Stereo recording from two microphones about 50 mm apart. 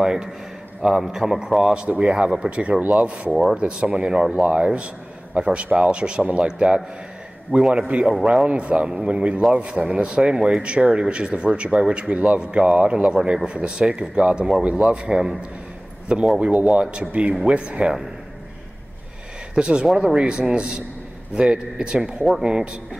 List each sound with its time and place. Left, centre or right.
0.0 s a man's voice: centre
8.0 s speech: centre
8.5 s a man's voice: right
16.3 s a man's voice: right
19.5 s a man's voice: centre